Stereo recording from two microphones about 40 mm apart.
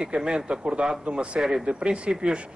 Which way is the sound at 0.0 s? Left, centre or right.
Right.